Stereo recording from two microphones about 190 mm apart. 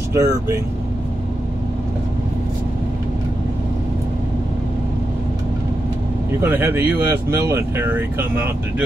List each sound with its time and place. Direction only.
0.1 s speech: 15° right (ahead or behind)
6.4 s speech: 10° right (ahead or behind)